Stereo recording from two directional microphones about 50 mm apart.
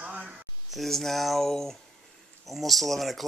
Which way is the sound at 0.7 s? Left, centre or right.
Centre.